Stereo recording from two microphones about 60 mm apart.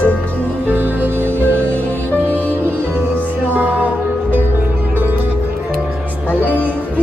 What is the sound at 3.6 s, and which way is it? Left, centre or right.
Music, right.